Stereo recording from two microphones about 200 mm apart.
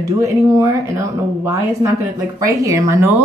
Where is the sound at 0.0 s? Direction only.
15° right (ahead or behind).